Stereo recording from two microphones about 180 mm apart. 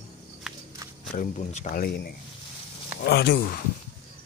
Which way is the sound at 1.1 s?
40° left (ahead or behind).